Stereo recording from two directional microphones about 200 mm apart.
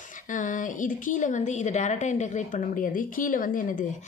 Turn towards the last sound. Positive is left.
turn(degrees=40)  # may be behind; listen again after turning